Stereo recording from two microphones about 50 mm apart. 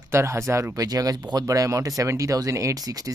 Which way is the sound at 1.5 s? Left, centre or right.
Right.